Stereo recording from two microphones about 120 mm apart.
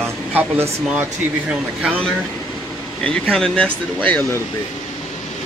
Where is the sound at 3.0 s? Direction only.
5° left (ahead or behind).